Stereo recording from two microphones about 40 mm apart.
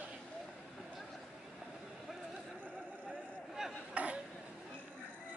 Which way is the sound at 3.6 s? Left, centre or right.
Centre.